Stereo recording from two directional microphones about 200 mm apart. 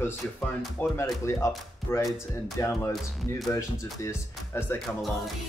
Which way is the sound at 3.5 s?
15° left (ahead or behind).